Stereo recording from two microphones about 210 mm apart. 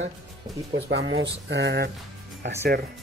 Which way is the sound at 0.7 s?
55° right (ahead or behind).